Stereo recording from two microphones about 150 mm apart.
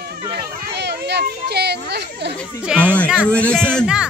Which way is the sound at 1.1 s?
90° right.